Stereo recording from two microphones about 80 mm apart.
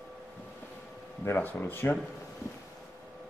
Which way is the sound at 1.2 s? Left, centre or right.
Left.